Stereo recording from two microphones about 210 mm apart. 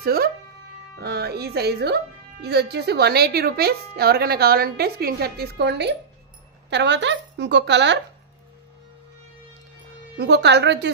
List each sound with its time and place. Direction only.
0.0 s music: 45° right (ahead or behind)
0.9 s a woman's voice: 50° right (ahead or behind)
10.1 s a woman's voice: 55° right (ahead or behind)